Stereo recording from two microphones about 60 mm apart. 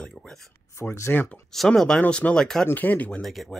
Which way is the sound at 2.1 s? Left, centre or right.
Centre.